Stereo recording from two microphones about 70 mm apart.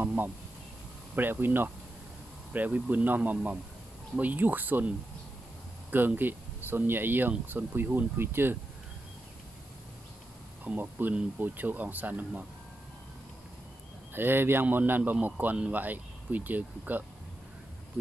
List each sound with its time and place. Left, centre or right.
0.0 s a sound: right
1.1 s speech: right
10.6 s speech: right
14.1 s speech: right